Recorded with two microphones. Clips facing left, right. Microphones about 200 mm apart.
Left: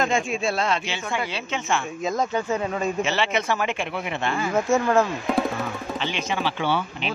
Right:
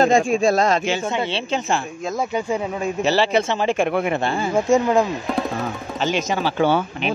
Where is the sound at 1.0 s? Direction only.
25° right (ahead or behind).